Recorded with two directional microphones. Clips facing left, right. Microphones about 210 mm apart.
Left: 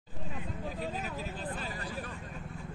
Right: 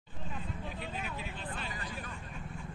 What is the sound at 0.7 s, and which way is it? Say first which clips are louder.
Vehicle: left 6 dB; 40° left (ahead or behind).